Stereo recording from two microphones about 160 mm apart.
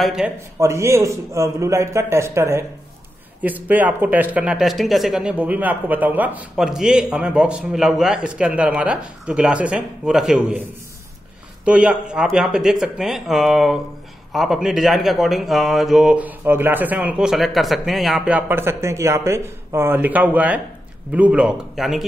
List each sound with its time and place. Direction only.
0.0 s speech: 5° right (ahead or behind)
0.6 s speech: 20° right (ahead or behind)
11.6 s speech: 5° right (ahead or behind)